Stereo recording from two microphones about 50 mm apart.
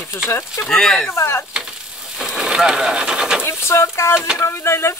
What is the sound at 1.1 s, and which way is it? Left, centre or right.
Speech, left.